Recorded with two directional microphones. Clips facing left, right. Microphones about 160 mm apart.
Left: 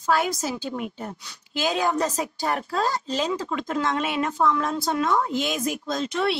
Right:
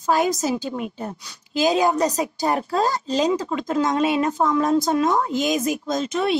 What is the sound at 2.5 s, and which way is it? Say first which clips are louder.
A woman's voice: right 3 dB; 40° right (ahead or behind).